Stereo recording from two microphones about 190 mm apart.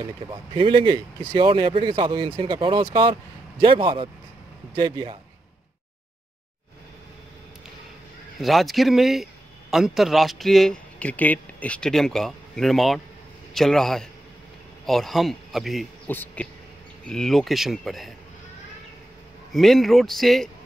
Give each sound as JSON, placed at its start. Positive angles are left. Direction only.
{"t": 0.3, "sound": "speech", "side_deg": -25}
{"t": 8.4, "sound": "a man's voice", "side_deg": 0}
{"t": 16.1, "sound": "speech", "side_deg": 10}
{"t": 19.5, "sound": "speech", "side_deg": 0}